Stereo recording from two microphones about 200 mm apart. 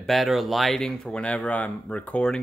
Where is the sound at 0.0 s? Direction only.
Centre (ahead or behind).